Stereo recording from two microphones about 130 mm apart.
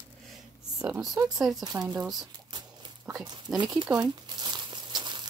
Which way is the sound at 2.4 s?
35° right (ahead or behind).